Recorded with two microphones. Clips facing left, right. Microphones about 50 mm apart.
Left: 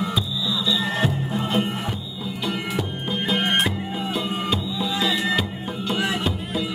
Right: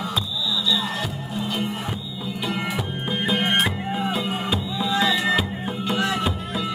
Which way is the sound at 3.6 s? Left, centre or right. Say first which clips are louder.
Right 1 dB; centre.